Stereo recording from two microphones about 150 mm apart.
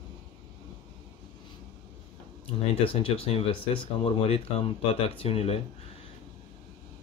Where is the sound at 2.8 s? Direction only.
40° left (ahead or behind).